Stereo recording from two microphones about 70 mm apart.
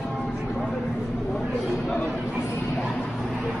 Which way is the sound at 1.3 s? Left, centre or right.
Centre.